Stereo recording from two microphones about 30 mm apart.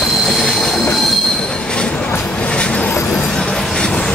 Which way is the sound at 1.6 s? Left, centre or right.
Left.